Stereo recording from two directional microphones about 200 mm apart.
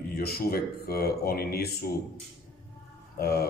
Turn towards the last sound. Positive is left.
turn(degrees=50)  # may be behind; listen again after turning